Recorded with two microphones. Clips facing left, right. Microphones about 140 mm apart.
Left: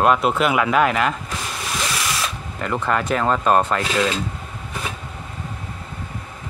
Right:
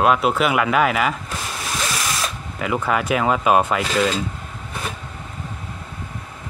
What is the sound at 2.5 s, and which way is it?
Speech, 5° right (ahead or behind).